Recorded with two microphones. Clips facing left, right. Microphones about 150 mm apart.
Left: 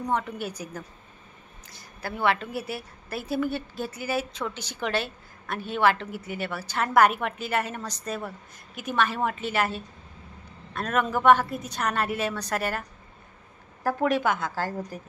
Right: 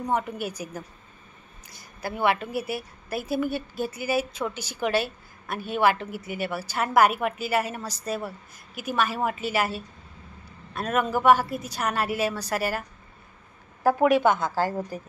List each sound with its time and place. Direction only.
0.0 s a woman's voice: 10° right (ahead or behind)
13.8 s a woman's voice: 5° right (ahead or behind)
14.2 s a woman's voice: 25° right (ahead or behind)